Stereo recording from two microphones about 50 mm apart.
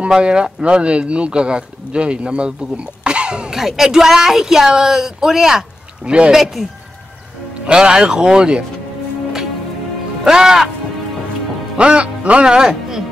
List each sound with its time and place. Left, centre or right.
0.1 s speech: centre
3.5 s a woman's voice: centre
7.6 s a woman's voice: centre
10.2 s a woman's voice: centre
11.7 s speech: centre